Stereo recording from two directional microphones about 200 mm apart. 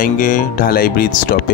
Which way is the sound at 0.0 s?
45° left (ahead or behind).